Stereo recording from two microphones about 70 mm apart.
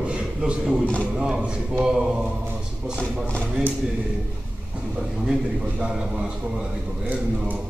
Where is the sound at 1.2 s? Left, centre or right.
Centre.